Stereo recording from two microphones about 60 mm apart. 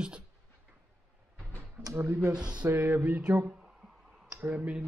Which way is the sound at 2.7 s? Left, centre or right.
Right.